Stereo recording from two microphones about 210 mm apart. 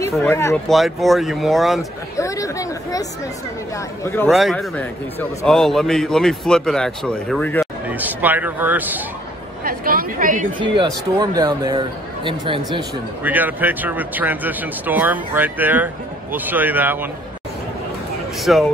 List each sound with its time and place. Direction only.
0.1 s speech: 5° left (ahead or behind)
0.7 s a man's voice: centre (ahead or behind)
2.1 s speech: 15° left (ahead or behind)
4.3 s a man's voice: centre (ahead or behind)
7.9 s speech: 10° right (ahead or behind)
9.7 s a woman's voice: 45° right (ahead or behind)
11.1 s speech: 20° right (ahead or behind)
13.2 s speech: 10° right (ahead or behind)
18.4 s speech: centre (ahead or behind)